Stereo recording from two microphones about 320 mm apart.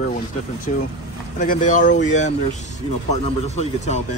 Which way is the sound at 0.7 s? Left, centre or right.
Left.